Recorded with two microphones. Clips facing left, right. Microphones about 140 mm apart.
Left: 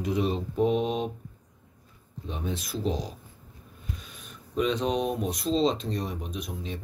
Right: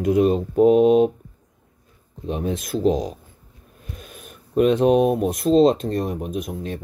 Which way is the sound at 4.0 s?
55° right (ahead or behind).